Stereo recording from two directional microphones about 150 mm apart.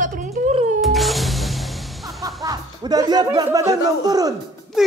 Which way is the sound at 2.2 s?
25° right (ahead or behind).